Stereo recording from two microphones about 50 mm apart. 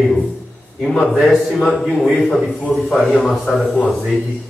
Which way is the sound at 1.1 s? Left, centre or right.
Centre.